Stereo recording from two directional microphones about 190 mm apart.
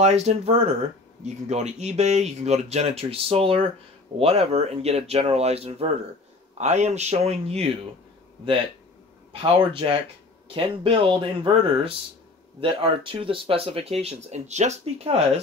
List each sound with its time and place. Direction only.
0.0 s speech: 35° right (ahead or behind)
9.3 s speech: 25° right (ahead or behind)